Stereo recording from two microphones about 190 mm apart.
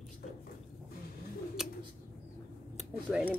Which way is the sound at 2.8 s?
Centre (ahead or behind).